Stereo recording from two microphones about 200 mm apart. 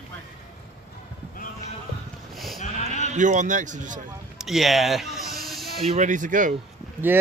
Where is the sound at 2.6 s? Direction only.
35° left (ahead or behind).